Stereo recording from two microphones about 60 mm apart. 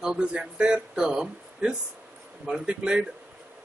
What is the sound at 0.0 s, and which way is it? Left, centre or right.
Speech, centre.